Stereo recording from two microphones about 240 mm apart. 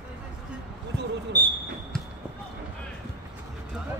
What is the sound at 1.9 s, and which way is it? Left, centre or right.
Basketball bounce, centre.